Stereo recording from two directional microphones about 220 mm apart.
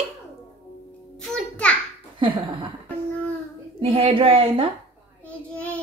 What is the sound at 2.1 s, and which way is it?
Speech, 20° right (ahead or behind).